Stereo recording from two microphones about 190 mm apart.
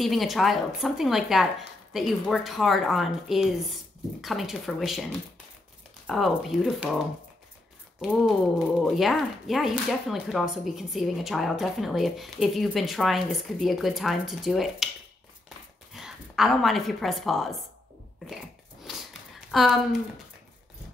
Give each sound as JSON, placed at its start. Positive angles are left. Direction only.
{"t": 0.0, "sound": "speech", "side_deg": 0}
{"t": 8.0, "sound": "speech", "side_deg": 0}
{"t": 15.9, "sound": "a woman's voice", "side_deg": 0}
{"t": 19.5, "sound": "speech", "side_deg": 0}